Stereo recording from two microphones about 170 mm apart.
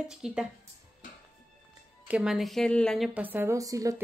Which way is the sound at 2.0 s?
5° right (ahead or behind).